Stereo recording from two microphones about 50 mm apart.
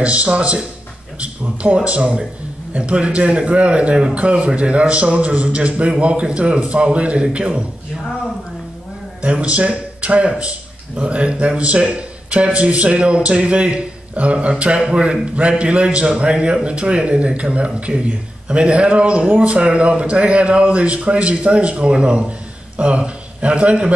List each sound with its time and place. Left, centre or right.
0.0 s a man's voice: right
9.2 s a man's voice: right